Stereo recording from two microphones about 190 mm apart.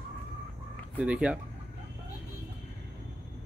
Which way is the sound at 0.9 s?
5° right (ahead or behind).